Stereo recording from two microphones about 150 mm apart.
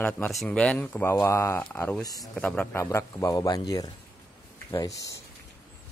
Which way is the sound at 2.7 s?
20° left (ahead or behind).